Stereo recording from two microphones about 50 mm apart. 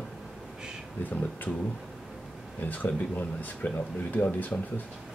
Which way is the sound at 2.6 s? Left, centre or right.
Left.